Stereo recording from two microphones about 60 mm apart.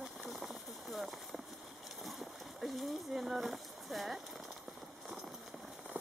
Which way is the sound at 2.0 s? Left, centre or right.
Centre.